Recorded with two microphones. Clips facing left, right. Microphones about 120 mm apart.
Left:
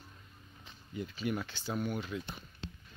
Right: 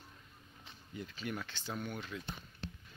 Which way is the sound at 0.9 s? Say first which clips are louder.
Left 6 dB; 10° left (ahead or behind).